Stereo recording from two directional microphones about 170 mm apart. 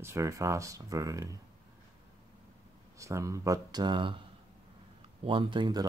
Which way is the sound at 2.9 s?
20° right (ahead or behind).